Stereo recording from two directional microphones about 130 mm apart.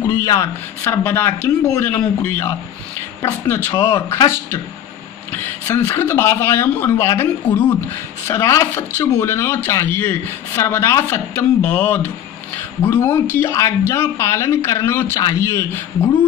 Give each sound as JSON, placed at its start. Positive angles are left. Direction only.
{"t": 0.0, "sound": "speech", "side_deg": 25}
{"t": 5.3, "sound": "speech", "side_deg": 15}